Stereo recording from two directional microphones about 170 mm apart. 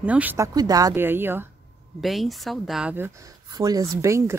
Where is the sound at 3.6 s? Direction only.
20° right (ahead or behind).